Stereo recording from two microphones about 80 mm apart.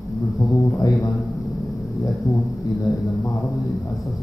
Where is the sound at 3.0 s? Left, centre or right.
Left.